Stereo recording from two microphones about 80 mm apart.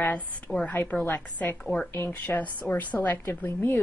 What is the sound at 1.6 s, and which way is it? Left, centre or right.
Speech, centre.